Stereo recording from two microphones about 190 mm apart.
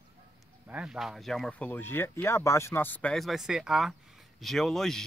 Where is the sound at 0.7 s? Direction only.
5° right (ahead or behind).